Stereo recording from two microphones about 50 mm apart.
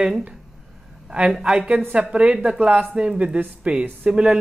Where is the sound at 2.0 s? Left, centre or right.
Right.